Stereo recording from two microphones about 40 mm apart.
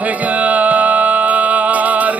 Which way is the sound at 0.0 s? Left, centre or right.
Right.